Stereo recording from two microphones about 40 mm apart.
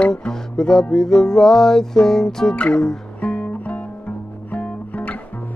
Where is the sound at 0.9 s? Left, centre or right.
Centre.